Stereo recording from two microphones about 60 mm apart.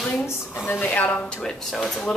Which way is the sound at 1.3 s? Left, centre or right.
Centre.